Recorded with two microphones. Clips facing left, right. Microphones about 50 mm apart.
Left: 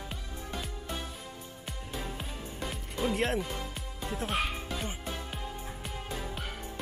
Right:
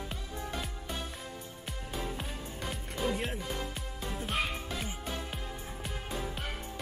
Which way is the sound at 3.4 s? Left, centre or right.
Centre.